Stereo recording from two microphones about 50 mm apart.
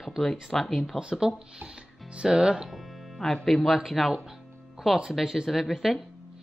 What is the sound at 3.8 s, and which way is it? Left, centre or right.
Speech, centre.